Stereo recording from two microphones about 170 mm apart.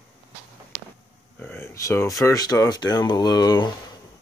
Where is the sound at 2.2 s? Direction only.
20° left (ahead or behind).